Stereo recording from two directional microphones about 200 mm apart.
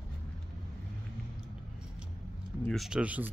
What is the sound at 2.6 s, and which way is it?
Speech, centre (ahead or behind).